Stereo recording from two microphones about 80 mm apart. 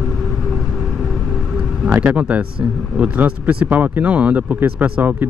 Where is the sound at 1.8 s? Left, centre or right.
Centre.